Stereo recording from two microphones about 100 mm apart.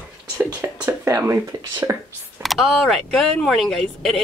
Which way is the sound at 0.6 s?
25° right (ahead or behind).